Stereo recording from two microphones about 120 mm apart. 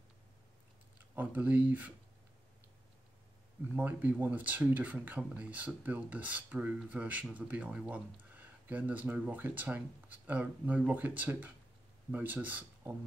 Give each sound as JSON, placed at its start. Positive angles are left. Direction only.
{"t": 0.9, "sound": "speech", "side_deg": -15}
{"t": 3.7, "sound": "speech", "side_deg": -15}